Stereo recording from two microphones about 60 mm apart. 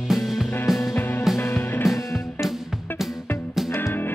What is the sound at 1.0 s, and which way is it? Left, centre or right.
Music, left.